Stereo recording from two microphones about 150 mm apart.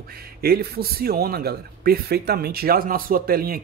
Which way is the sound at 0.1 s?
90° right.